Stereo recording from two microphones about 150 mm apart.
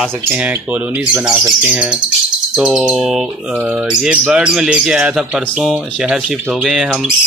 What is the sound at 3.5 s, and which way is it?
Speech, 10° right (ahead or behind).